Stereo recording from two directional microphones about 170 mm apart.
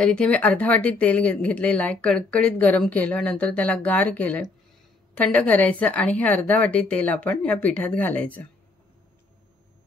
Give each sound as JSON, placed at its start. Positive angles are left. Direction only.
{"t": 0.0, "sound": "speech", "side_deg": 5}